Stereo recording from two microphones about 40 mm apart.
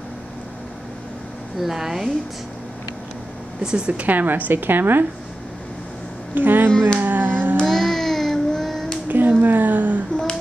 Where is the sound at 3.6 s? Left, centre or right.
Right.